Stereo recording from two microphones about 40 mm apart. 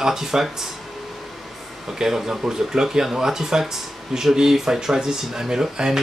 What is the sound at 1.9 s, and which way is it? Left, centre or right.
Speech, centre.